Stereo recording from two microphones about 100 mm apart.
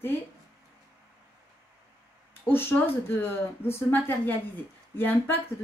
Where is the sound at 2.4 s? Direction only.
20° left (ahead or behind).